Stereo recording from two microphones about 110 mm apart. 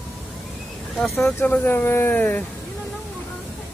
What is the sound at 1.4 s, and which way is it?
Speech, 15° left (ahead or behind).